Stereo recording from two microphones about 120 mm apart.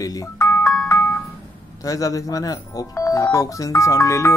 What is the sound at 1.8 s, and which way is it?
Speech, 30° left (ahead or behind).